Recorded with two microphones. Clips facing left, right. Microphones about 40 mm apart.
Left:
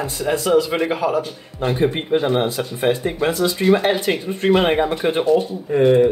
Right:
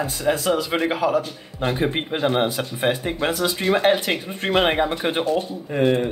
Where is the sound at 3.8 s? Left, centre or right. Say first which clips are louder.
Right 1 dB; right.